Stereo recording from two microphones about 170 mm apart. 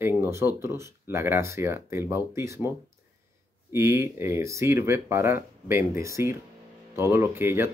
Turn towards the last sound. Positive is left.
turn(degrees=-15)  # may be behind; listen again after turning